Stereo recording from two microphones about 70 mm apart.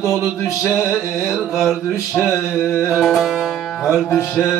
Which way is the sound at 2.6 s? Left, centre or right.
Left.